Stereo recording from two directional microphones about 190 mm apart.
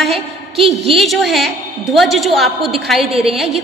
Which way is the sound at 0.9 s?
Centre (ahead or behind).